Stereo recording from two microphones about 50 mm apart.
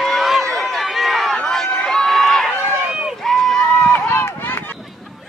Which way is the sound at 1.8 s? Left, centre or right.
Centre.